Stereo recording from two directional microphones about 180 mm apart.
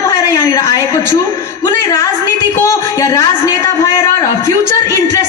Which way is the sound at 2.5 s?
15° left (ahead or behind).